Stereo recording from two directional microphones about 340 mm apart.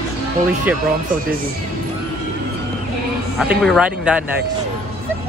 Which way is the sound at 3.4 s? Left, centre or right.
Centre.